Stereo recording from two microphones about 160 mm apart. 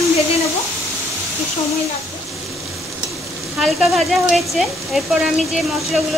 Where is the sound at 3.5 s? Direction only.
Centre (ahead or behind).